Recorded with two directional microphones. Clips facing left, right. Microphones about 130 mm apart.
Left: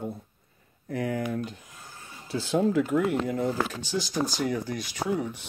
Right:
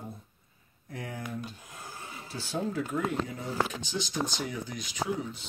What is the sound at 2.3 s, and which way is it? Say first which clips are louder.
Speech: left 9 dB; 90° left.